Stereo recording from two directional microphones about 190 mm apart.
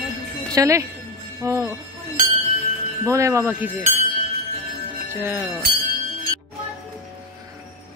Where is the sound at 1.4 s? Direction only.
15° right (ahead or behind).